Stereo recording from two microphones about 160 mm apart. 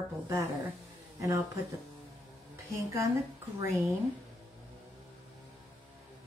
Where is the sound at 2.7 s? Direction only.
20° right (ahead or behind).